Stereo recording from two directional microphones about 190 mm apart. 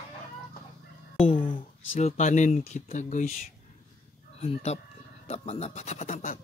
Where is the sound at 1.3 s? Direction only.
25° left (ahead or behind).